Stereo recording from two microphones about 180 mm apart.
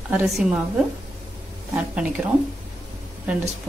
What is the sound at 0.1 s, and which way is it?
Speech, centre (ahead or behind).